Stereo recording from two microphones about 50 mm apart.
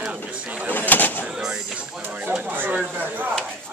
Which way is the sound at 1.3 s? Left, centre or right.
Centre.